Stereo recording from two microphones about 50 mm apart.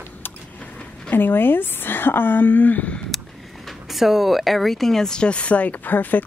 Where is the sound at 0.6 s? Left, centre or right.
Left.